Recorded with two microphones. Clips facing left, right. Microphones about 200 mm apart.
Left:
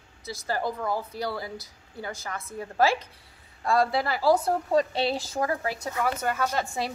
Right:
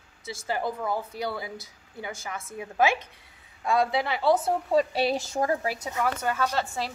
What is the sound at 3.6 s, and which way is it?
A woman's voice, centre (ahead or behind).